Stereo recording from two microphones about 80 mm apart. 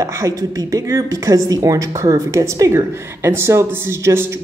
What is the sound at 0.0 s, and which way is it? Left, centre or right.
Speech, right.